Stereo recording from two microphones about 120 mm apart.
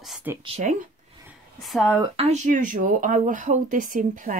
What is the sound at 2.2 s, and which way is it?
Speech, 80° right.